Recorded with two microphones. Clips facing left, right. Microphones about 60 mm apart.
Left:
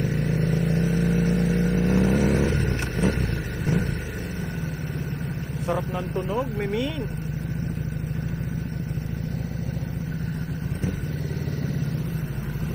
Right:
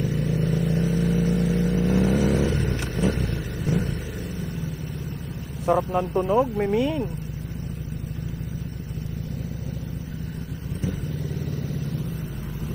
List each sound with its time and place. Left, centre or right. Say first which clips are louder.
0.0 s vehicle: even; left
6.1 s speech: right 6 dB; right